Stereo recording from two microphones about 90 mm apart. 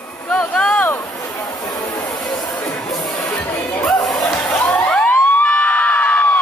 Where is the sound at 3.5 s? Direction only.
15° left (ahead or behind).